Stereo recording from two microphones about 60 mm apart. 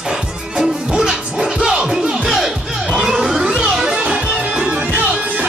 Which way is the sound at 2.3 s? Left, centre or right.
Centre.